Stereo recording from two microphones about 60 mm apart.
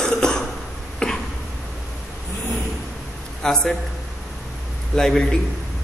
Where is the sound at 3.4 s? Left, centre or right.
Centre.